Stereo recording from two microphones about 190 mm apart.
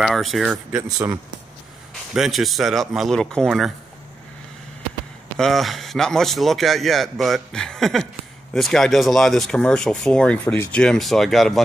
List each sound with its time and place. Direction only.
0.0 s speech: centre (ahead or behind)
0.8 s speech: 20° right (ahead or behind)
2.1 s speech: centre (ahead or behind)
5.4 s speech: centre (ahead or behind)